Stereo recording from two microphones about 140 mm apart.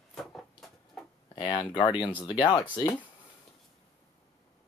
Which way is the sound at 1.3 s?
35° left (ahead or behind).